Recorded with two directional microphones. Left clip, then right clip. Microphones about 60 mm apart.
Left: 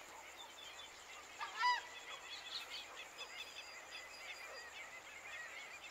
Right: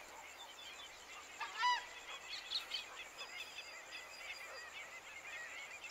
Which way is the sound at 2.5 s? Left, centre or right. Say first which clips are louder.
Right 6 dB; right.